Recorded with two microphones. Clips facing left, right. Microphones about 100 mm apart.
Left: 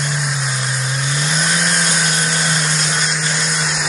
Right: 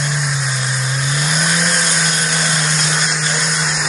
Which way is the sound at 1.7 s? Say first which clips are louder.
Even; centre (ahead or behind).